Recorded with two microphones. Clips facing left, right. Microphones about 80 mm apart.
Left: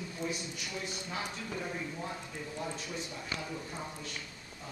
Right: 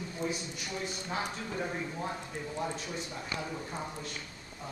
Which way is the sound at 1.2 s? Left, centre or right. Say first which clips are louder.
Right 3 dB; right.